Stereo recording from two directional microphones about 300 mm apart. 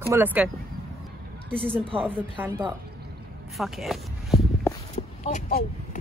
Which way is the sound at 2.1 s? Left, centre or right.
Centre.